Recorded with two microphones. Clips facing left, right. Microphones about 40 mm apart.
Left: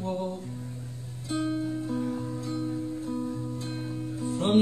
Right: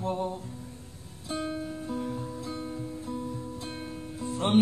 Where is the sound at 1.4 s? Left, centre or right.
Centre.